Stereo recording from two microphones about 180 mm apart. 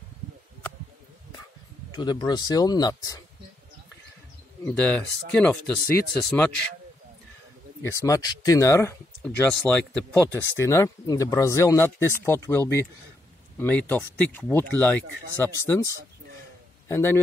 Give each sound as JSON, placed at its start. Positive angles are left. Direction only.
{"t": 1.9, "sound": "speech", "side_deg": 25}
{"t": 4.6, "sound": "speech", "side_deg": 5}
{"t": 7.8, "sound": "a man's voice", "side_deg": 15}